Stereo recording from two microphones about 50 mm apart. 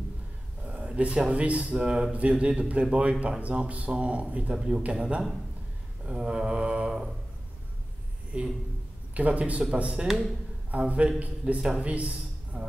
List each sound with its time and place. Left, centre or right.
0.7 s a sound: right
1.3 s speech: right
6.0 s mantra: centre
8.3 s speech: right
10.7 s speech: right